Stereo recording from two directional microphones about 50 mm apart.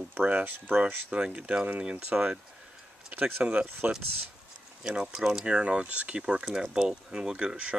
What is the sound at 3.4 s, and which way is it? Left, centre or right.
Speech, right.